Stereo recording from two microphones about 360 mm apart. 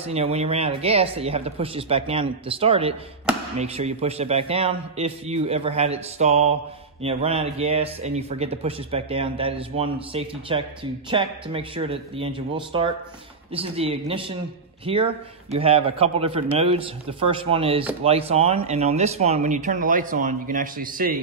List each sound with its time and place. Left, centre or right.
0.0 s speech: centre